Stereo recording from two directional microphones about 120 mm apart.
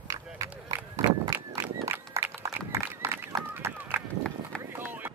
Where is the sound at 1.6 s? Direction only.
25° right (ahead or behind).